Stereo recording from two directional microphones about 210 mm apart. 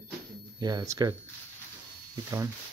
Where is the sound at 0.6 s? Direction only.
20° right (ahead or behind).